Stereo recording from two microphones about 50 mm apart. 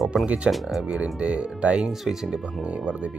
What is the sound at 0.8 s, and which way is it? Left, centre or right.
Speech, centre.